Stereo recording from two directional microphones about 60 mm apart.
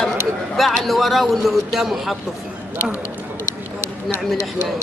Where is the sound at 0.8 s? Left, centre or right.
Centre.